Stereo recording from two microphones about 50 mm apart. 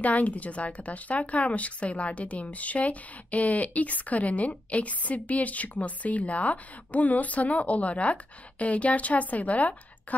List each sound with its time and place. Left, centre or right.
0.0 s speech: left